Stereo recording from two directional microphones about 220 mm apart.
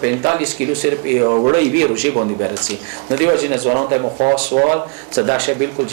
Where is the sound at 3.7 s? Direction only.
30° right (ahead or behind).